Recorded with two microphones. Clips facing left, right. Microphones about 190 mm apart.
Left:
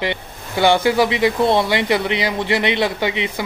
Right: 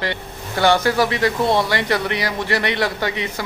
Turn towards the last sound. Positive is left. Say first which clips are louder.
# left 2 dB
turn(degrees=15)  # may be behind; listen again after turning